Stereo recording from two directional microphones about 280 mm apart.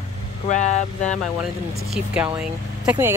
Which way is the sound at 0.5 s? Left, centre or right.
Left.